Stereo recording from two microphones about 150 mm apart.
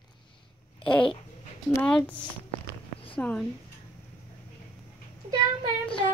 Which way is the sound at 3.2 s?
10° left (ahead or behind).